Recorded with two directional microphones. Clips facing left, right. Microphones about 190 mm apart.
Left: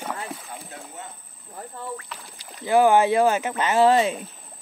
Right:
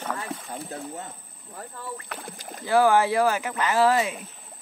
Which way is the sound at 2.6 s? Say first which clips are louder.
Left 2 dB; 20° left (ahead or behind).